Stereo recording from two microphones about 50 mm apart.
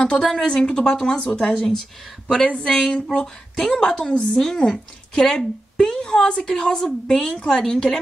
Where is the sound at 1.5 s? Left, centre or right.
Centre.